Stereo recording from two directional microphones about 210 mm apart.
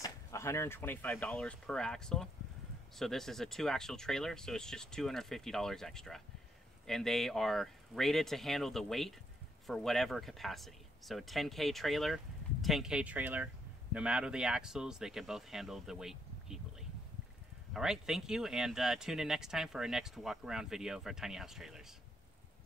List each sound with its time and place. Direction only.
0.0 s speech: 15° left (ahead or behind); by 16.5 s centre (ahead or behind)
17.7 s speech: centre (ahead or behind)